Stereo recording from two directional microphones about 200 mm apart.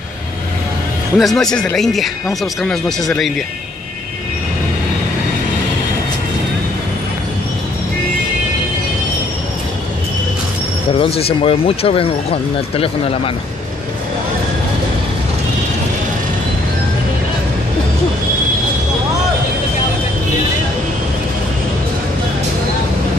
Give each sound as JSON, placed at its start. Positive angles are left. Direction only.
{"t": 1.1, "sound": "speech", "side_deg": 0}
{"t": 10.9, "sound": "speech", "side_deg": 30}